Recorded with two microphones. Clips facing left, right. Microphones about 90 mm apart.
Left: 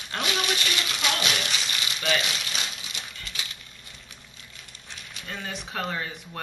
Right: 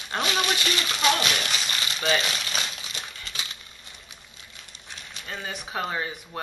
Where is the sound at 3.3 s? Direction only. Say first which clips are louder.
Right 1 dB; 30° right (ahead or behind).